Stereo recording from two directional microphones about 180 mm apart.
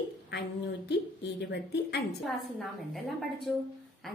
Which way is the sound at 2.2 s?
Centre (ahead or behind).